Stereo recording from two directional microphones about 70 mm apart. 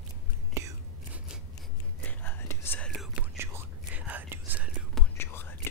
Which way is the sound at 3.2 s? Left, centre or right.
Centre.